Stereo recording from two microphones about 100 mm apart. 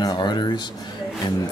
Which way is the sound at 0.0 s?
45° left (ahead or behind).